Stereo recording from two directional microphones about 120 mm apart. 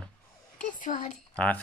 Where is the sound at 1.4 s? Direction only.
15° left (ahead or behind).